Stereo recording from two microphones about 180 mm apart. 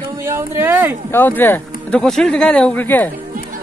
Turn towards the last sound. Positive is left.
turn(degrees=10)  # may be behind; listen again after turning